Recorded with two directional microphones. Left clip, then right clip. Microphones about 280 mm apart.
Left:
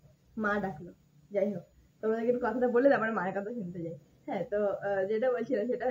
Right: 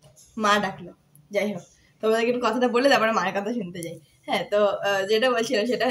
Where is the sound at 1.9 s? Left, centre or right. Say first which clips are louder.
Right 7 dB; centre.